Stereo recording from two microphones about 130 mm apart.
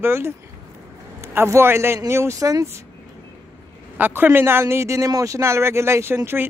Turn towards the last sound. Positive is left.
turn(degrees=-15)  # may be behind; listen again after turning